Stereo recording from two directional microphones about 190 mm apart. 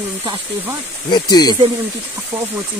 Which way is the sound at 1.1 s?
20° left (ahead or behind).